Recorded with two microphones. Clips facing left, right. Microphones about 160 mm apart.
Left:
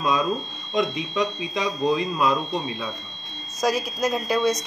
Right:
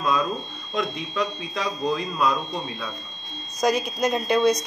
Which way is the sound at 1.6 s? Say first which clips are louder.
Left 3 dB; 5° left (ahead or behind).